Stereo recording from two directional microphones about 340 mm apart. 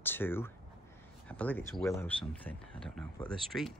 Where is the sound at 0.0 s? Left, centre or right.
Centre.